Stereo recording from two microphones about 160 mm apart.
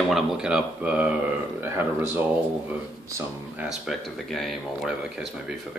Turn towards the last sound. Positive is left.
turn(degrees=-5)  # may be behind; listen again after turning